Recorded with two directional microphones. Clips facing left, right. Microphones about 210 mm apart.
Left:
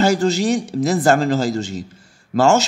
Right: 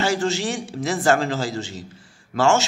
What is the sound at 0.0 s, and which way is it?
A man's voice, 40° left (ahead or behind).